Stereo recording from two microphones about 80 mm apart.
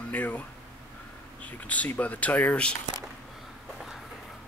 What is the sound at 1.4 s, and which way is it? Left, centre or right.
Speech, centre.